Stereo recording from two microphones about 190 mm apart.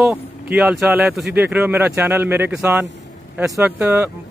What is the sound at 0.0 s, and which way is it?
Speech, 5° right (ahead or behind).